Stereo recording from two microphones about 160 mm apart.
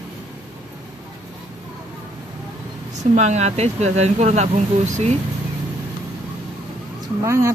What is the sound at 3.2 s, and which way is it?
Speech, 45° right (ahead or behind).